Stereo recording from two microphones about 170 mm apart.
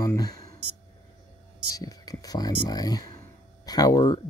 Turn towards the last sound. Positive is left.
turn(degrees=25)  # may be behind; listen again after turning